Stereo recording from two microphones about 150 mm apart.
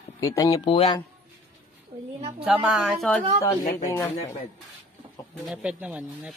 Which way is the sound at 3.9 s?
15° left (ahead or behind).